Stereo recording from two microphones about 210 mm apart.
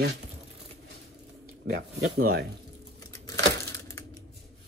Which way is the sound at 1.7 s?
50° right (ahead or behind).